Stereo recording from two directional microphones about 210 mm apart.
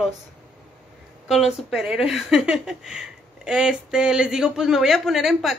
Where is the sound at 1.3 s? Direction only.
Centre (ahead or behind).